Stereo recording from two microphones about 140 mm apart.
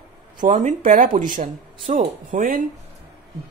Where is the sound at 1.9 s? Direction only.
55° right (ahead or behind).